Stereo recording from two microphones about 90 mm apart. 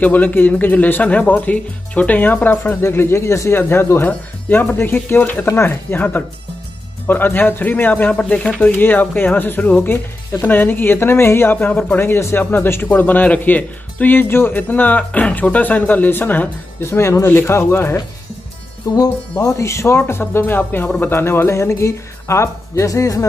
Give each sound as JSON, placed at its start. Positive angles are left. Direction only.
{"t": 0.0, "sound": "speech", "side_deg": 20}
{"t": 18.9, "sound": "speech", "side_deg": 40}